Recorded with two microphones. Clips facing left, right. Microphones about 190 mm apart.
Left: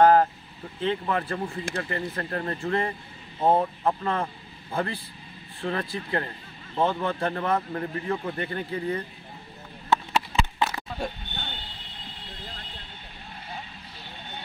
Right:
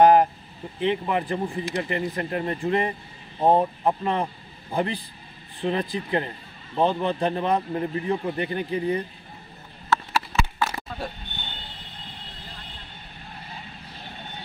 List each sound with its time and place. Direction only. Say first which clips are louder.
0.0 s speech: right 2 dB; 15° right (ahead or behind)
9.8 s a sound: even; 20° left (ahead or behind)
11.0 s speech: left 2 dB; 5° right (ahead or behind)